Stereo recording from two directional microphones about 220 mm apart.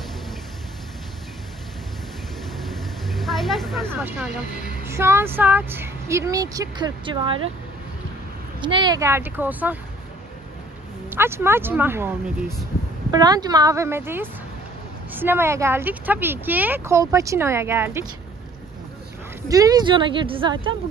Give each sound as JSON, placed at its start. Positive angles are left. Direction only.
{"t": 2.5, "sound": "vehicle", "side_deg": 0}
{"t": 3.8, "sound": "speech", "side_deg": -10}
{"t": 8.6, "sound": "speech", "side_deg": -20}
{"t": 11.1, "sound": "speech", "side_deg": -10}
{"t": 13.1, "sound": "speech", "side_deg": -20}
{"t": 19.4, "sound": "speech", "side_deg": -15}